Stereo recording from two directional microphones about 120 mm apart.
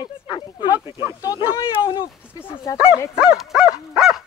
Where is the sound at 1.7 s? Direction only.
40° left (ahead or behind).